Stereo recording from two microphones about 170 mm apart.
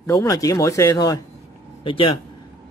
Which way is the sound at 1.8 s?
30° left (ahead or behind).